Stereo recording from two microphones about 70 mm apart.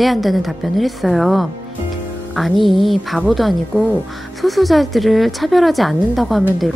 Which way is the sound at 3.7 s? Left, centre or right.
Centre.